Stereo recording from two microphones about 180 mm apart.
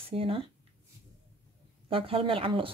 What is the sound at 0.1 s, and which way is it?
Speech, 30° right (ahead or behind).